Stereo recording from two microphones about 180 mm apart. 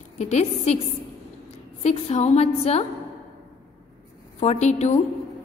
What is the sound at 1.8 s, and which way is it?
A woman's voice, 40° left (ahead or behind).